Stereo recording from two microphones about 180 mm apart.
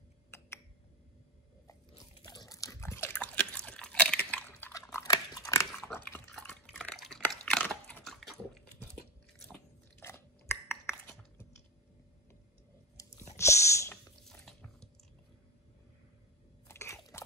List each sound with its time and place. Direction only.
2.2 s biting: 20° left (ahead or behind)
5.7 s drip: 10° left (ahead or behind)
9.5 s biting: 10° left (ahead or behind)
13.0 s a sound: 20° left (ahead or behind)
14.2 s water: 5° left (ahead or behind)
16.6 s biting: 15° left (ahead or behind)